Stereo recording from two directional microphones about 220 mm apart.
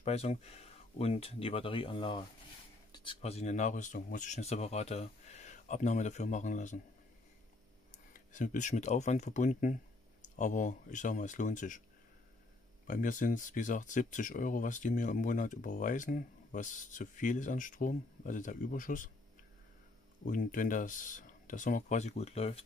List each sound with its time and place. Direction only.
0.0 s speech: 30° left (ahead or behind)
8.1 s speech: 35° left (ahead or behind)
12.8 s speech: 35° left (ahead or behind)
20.2 s speech: 35° left (ahead or behind)